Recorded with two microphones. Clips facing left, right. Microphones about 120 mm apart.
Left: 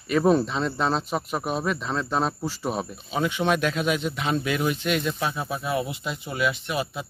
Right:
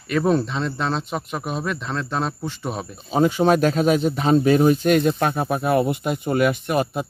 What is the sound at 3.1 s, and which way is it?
Speech, 40° right (ahead or behind).